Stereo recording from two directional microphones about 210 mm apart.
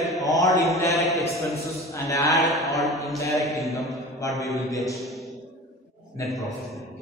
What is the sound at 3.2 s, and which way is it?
Speech, 15° left (ahead or behind).